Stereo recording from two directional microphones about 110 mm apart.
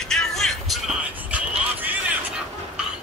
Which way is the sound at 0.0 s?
5° left (ahead or behind).